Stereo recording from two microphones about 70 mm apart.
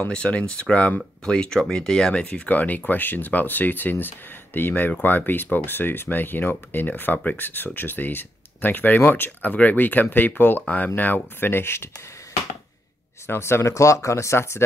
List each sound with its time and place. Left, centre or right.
0.1 s speech: centre
2.2 s speech: left
13.3 s speech: left